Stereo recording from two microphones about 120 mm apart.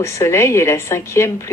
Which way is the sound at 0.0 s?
25° left (ahead or behind).